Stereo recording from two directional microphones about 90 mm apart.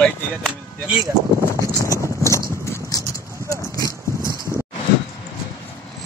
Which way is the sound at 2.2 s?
35° left (ahead or behind).